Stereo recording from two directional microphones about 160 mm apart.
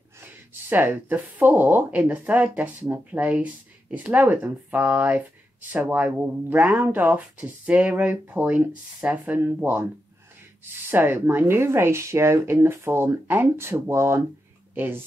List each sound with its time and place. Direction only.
0.2 s a woman's voice: 15° right (ahead or behind)